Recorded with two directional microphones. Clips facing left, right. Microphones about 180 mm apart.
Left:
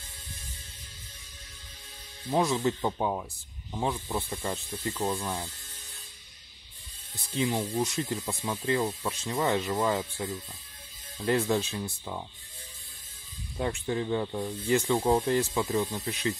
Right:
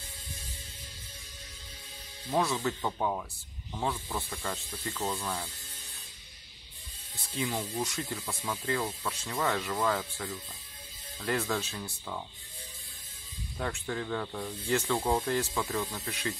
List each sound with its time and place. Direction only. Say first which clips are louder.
2.3 s speech: left 3 dB; 20° left (ahead or behind)
7.3 s speech: left 5 dB; 20° left (ahead or behind)
13.6 s speech: left 5 dB; 20° left (ahead or behind)